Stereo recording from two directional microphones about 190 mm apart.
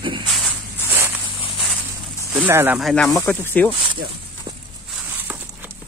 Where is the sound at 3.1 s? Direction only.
15° left (ahead or behind).